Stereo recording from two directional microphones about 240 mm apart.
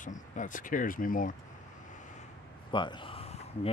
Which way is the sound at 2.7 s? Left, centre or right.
Centre.